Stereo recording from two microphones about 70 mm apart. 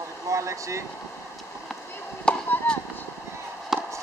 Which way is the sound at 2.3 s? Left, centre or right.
Centre.